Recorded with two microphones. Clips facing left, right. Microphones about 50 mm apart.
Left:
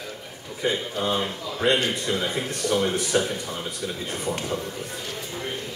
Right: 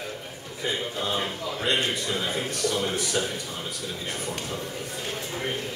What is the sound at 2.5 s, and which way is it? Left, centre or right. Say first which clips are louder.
Speech: left 3 dB; left.